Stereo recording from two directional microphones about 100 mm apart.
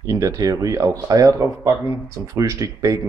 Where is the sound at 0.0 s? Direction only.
35° right (ahead or behind).